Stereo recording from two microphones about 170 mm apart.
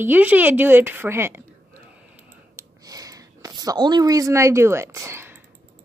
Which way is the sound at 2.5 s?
20° right (ahead or behind).